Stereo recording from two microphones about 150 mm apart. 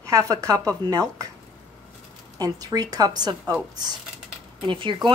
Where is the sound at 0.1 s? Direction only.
25° right (ahead or behind).